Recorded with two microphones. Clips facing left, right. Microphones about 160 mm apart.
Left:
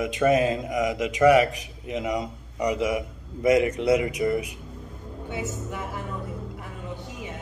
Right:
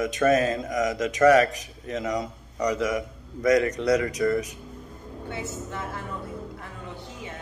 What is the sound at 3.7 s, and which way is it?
A man's voice, 25° left (ahead or behind).